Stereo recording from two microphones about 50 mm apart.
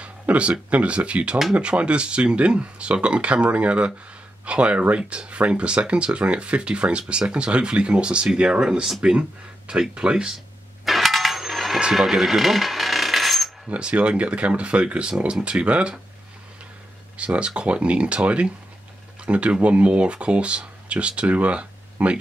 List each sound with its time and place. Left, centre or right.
0.0 s speech: right
10.9 s a sound: centre
11.9 s coin: centre
13.7 s speech: right
17.2 s speech: right